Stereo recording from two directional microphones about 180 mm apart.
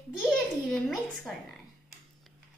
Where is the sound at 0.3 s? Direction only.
Centre (ahead or behind).